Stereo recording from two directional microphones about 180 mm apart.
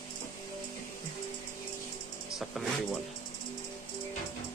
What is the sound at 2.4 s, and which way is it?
Speech, centre (ahead or behind).